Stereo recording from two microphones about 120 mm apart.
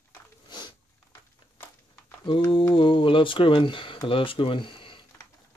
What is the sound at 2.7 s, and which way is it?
Speech, 45° left (ahead or behind).